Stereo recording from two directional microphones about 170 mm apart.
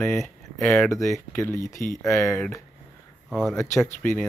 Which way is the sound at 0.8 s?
15° left (ahead or behind).